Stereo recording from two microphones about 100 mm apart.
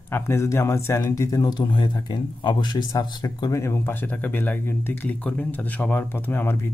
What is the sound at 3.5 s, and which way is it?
Speech, 25° left (ahead or behind).